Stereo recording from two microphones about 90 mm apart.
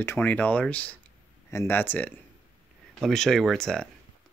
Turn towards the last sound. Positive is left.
turn(degrees=5)  # may be behind; listen again after turning